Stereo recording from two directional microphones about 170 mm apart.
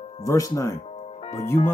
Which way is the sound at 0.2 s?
20° left (ahead or behind).